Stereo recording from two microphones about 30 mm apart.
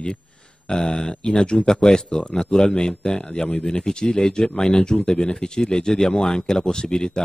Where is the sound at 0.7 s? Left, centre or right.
Left.